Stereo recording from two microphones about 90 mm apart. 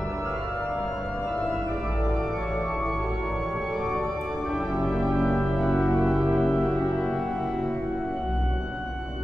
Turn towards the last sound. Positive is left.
turn(degrees=5)  # may be behind; listen again after turning